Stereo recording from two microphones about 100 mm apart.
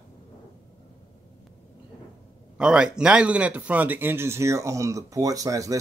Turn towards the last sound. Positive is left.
turn(degrees=-35)  # may be behind; listen again after turning